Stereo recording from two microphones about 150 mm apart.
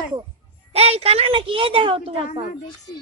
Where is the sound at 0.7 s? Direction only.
40° right (ahead or behind).